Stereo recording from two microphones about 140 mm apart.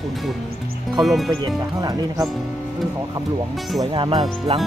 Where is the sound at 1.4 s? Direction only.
25° right (ahead or behind).